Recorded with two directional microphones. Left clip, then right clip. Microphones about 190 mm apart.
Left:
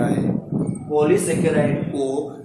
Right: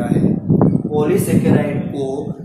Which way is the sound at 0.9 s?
Centre (ahead or behind).